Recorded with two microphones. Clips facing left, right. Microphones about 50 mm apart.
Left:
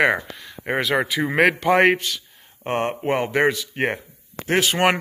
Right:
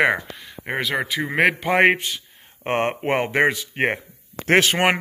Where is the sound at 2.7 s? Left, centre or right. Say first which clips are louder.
Right 1 dB; right.